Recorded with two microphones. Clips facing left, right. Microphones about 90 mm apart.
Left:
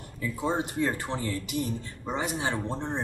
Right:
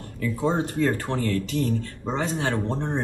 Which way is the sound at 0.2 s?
15° left (ahead or behind).